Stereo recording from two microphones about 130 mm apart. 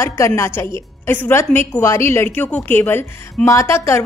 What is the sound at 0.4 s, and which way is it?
A woman's voice, 20° left (ahead or behind).